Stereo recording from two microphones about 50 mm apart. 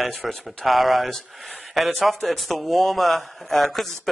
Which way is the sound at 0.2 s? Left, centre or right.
Centre.